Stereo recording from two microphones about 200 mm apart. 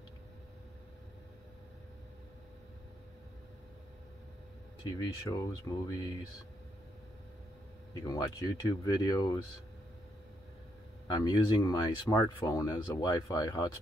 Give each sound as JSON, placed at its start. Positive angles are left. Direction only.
{"t": 4.8, "sound": "speech", "side_deg": 20}
{"t": 7.9, "sound": "speech", "side_deg": 15}
{"t": 11.1, "sound": "speech", "side_deg": 20}